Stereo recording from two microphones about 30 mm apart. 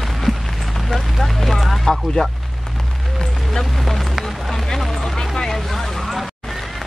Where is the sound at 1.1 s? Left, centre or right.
Centre.